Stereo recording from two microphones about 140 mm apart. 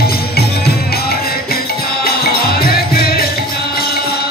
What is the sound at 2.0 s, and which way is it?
Music, 90° left.